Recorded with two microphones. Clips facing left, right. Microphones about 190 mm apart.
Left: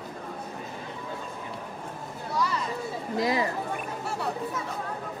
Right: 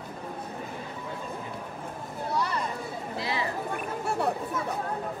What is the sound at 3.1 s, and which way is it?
Speech, 40° left (ahead or behind).